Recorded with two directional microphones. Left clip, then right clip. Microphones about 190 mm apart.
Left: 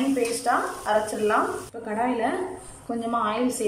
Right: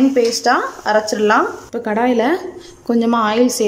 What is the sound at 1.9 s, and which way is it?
Speech, 60° right (ahead or behind).